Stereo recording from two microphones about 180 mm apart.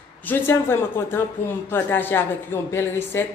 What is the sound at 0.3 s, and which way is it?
Speech, 10° left (ahead or behind).